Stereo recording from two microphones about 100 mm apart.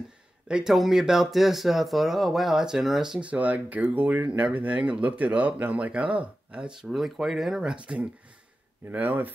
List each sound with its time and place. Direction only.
0.5 s speech: 5° right (ahead or behind)